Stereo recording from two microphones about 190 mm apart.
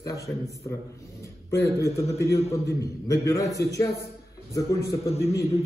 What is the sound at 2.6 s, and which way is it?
Speech, 15° left (ahead or behind).